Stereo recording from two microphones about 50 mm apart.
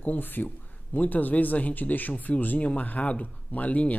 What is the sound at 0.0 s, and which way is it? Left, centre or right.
Speech, left.